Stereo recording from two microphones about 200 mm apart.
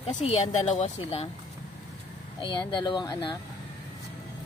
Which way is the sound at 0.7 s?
30° left (ahead or behind).